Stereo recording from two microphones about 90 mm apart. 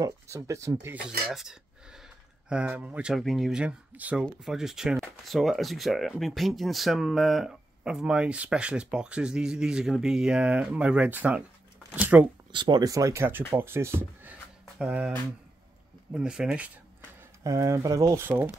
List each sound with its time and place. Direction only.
0.0 s speech: 35° right (ahead or behind)
0.9 s speech: 5° right (ahead or behind)
2.5 s speech: 20° right (ahead or behind)
3.2 s speech: centre (ahead or behind)
3.6 s speech: 15° right (ahead or behind)
4.5 s speech: 5° right (ahead or behind)
12.5 s speech: 55° right (ahead or behind)
12.9 s speech: 35° right (ahead or behind)
14.8 s speech: 10° right (ahead or behind)
17.4 s speech: 35° right (ahead or behind)
18.2 s speech: 25° right (ahead or behind)